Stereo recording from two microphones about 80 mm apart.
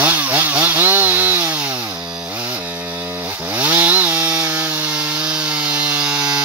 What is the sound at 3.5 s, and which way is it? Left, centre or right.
Chainsaw, right.